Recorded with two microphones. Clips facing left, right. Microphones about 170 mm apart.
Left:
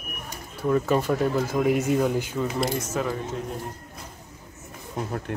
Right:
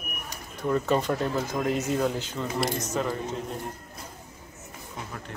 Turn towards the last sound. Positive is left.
turn(degrees=45)  # may be behind; listen again after turning